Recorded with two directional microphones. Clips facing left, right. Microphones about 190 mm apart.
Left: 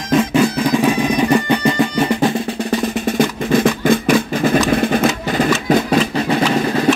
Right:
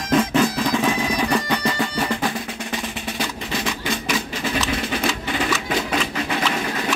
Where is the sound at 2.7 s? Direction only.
45° left (ahead or behind).